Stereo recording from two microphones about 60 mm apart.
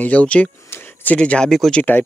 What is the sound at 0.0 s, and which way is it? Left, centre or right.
Speech, left.